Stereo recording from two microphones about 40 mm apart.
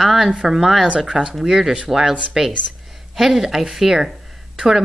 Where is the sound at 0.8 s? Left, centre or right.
Right.